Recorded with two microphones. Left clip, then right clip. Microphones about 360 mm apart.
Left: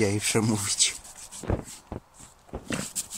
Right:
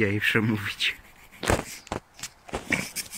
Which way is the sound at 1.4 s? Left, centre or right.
Right.